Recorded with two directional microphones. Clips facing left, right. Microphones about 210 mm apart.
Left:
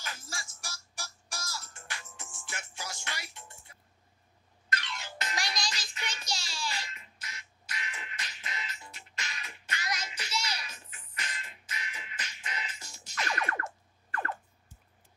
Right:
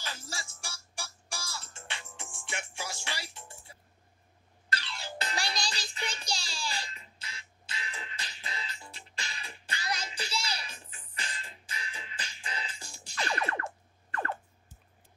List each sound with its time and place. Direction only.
0.0 s music: 30° right (ahead or behind)
4.6 s music: 30° right (ahead or behind)